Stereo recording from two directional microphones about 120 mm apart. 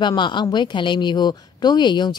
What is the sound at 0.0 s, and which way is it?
A woman's voice, 40° left (ahead or behind).